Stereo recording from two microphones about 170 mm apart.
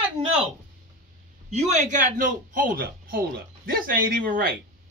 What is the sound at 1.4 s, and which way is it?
A man's voice, 45° right (ahead or behind).